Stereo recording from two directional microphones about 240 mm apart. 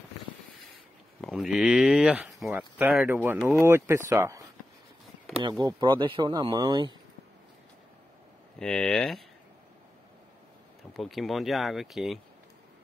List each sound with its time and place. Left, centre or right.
1.2 s speech: centre
8.5 s speech: centre
10.9 s speech: centre